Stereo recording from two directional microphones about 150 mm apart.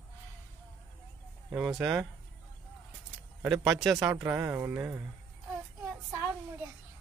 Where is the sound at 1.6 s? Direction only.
5° right (ahead or behind).